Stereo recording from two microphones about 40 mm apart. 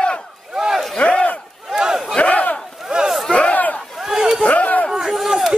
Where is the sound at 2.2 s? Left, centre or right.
Left.